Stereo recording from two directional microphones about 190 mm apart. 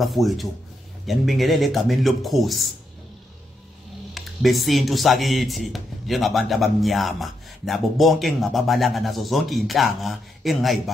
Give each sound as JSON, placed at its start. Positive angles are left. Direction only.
{"t": 0.0, "sound": "speech", "side_deg": 0}
{"t": 4.1, "sound": "speech", "side_deg": 0}